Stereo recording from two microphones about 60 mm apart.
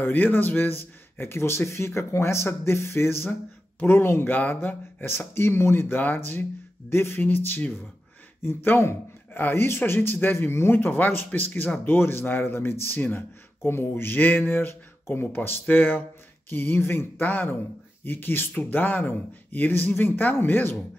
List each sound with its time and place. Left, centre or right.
0.0 s a man's voice: left
4.3 s speech: left